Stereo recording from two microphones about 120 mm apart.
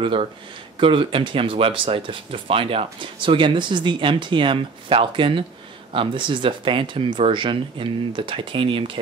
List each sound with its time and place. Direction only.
0.0 s speech: 45° right (ahead or behind)